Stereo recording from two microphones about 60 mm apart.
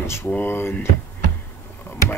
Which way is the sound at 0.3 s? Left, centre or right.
Left.